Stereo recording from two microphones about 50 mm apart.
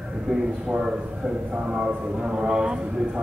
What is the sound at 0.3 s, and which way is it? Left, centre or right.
Speech, centre.